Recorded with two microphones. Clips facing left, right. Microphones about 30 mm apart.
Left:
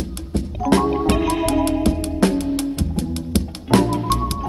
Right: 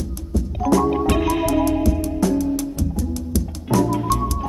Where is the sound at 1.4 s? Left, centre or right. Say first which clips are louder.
Even; left.